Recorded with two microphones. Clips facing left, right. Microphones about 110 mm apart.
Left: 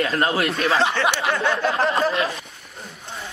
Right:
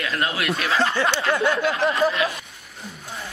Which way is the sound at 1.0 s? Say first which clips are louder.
Left 1 dB; 15° left (ahead or behind).